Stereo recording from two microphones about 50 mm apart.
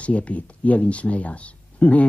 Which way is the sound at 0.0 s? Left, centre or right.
Left.